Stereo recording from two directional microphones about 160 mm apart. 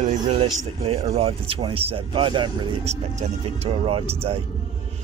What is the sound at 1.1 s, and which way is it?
Speech, 35° right (ahead or behind).